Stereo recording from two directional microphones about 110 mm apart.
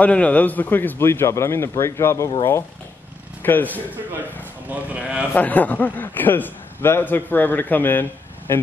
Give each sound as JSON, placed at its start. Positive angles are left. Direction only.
{"t": 0.0, "sound": "a man's voice", "side_deg": 10}
{"t": 3.4, "sound": "a man's voice", "side_deg": 15}
{"t": 4.6, "sound": "speech", "side_deg": -10}
{"t": 5.3, "sound": "a man's voice", "side_deg": 15}